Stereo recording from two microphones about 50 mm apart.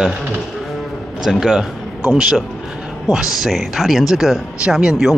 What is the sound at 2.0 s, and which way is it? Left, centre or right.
Speech, centre.